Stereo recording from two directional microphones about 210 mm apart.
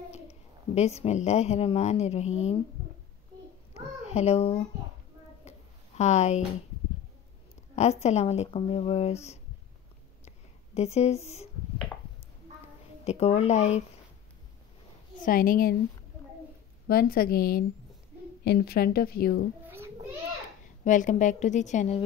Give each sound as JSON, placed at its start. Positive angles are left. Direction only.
{"t": 0.1, "sound": "a child's voice", "side_deg": 30}
{"t": 3.7, "sound": "a sound", "side_deg": 30}
{"t": 5.9, "sound": "speech", "side_deg": 35}
{"t": 7.7, "sound": "speech", "side_deg": 30}
{"t": 10.2, "sound": "a sound", "side_deg": 30}
{"t": 13.0, "sound": "speech", "side_deg": 30}
{"t": 15.2, "sound": "speech", "side_deg": 40}
{"t": 16.8, "sound": "speech", "side_deg": 45}
{"t": 19.6, "sound": "a sound", "side_deg": -10}
{"t": 20.8, "sound": "speech", "side_deg": 35}